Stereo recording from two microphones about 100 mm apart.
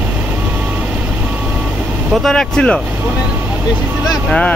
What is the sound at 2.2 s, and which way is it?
Speech, 5° left (ahead or behind).